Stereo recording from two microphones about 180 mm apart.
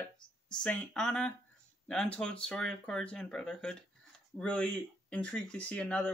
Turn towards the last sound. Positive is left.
turn(degrees=5)  # may be behind; listen again after turning